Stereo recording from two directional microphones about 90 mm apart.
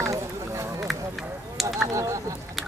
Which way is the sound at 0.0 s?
35° right (ahead or behind).